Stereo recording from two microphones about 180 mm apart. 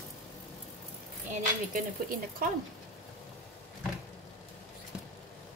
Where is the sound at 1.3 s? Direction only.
45° right (ahead or behind).